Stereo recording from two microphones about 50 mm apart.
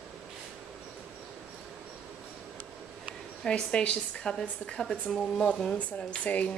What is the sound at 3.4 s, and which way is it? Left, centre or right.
A woman's voice, left.